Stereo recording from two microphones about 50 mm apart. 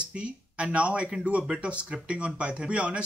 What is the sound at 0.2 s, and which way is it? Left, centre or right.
Speech, right.